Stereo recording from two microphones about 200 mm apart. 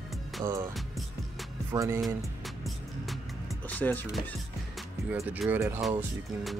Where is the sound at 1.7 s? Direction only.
15° right (ahead or behind).